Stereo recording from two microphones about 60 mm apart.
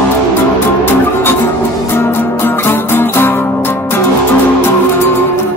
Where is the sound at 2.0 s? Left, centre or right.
Left.